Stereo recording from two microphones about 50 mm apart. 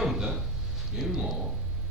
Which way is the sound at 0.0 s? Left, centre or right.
Centre.